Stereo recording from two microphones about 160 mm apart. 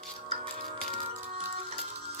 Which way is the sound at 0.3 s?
40° right (ahead or behind).